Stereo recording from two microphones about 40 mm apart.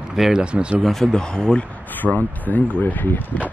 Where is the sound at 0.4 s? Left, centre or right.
Right.